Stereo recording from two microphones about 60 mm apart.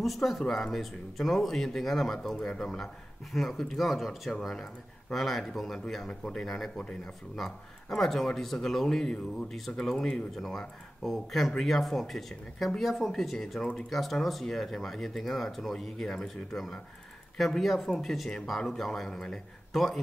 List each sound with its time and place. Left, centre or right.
0.0 s speech: centre
2.3 s speech: centre
2.6 s speech: centre